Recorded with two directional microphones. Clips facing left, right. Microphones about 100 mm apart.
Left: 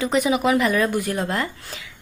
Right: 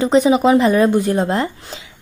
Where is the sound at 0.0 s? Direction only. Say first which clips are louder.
Right 7 dB; 30° right (ahead or behind).